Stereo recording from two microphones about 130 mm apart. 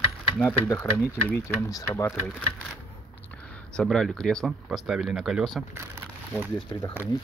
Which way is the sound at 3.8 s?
5° left (ahead or behind).